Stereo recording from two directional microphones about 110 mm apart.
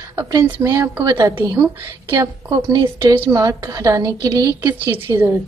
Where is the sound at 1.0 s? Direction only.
35° right (ahead or behind).